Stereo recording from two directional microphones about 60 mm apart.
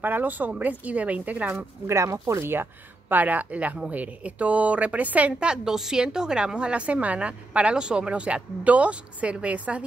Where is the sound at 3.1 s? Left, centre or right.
Right.